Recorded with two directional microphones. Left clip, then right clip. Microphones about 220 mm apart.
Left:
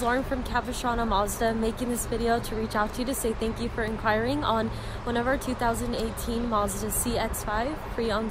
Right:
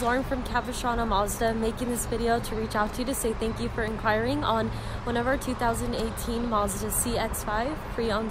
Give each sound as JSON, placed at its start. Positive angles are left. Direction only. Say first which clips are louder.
{"t": 0.0, "sound": "speech", "louder": "even", "side_deg": 0}